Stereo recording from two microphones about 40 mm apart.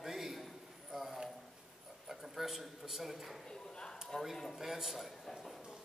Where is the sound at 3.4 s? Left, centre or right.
Centre.